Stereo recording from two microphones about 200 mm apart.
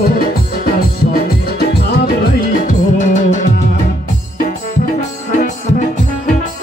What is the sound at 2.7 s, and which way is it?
Music, 40° left (ahead or behind).